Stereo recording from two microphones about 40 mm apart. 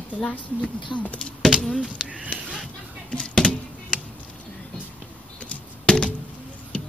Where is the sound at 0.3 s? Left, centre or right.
Left.